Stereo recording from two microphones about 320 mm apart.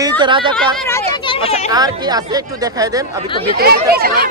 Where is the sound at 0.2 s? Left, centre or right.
Centre.